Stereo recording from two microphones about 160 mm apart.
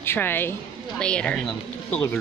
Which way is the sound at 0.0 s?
15° left (ahead or behind).